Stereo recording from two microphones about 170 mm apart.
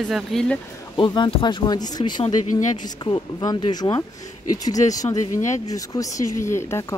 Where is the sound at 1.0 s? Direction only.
30° left (ahead or behind).